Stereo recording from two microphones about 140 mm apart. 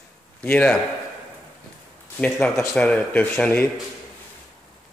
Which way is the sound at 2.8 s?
10° left (ahead or behind).